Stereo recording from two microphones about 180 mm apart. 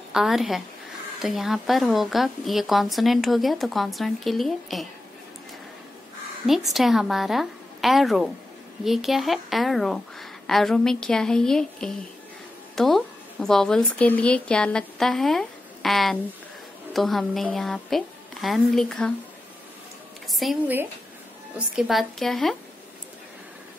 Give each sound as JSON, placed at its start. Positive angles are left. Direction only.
{"t": 0.1, "sound": "a woman's voice", "side_deg": 0}
{"t": 6.4, "sound": "a woman's voice", "side_deg": 0}
{"t": 20.2, "sound": "a woman's voice", "side_deg": 0}